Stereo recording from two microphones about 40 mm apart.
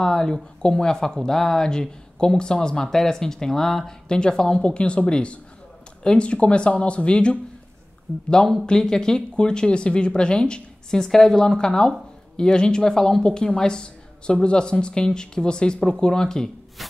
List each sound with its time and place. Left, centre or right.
0.0 s speech: centre
8.6 s speech: centre